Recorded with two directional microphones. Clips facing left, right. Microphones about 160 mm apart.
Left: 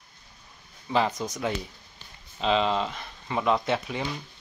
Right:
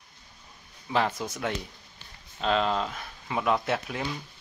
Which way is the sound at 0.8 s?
Centre (ahead or behind).